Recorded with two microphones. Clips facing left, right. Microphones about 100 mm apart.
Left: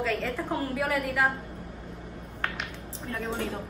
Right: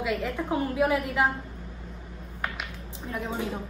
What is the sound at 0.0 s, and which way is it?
A woman's voice, 15° right (ahead or behind).